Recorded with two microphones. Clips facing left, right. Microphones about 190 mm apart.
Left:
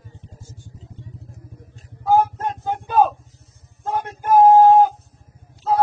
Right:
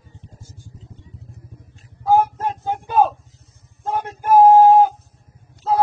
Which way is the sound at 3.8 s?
20° right (ahead or behind).